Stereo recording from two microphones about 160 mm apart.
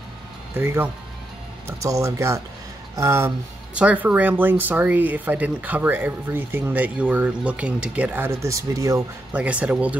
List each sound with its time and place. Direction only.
0.6 s speech: 15° right (ahead or behind)
9.3 s speech: 10° right (ahead or behind)